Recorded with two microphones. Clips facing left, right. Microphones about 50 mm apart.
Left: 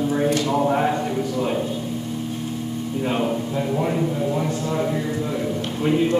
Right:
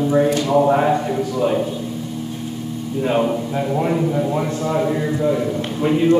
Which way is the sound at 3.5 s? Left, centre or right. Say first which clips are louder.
Right 3 dB; right.